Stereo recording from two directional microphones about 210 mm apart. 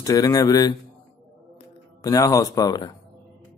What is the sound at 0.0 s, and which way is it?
Speech, 15° left (ahead or behind).